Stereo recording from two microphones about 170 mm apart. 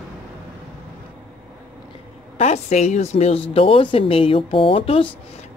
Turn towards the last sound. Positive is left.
turn(degrees=35)  # may be behind; listen again after turning